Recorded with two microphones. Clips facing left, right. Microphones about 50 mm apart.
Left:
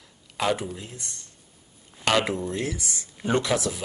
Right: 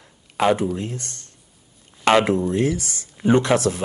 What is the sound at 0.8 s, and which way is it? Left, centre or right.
Speech, right.